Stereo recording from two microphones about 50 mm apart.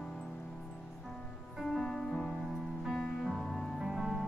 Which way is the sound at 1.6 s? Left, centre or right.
Centre.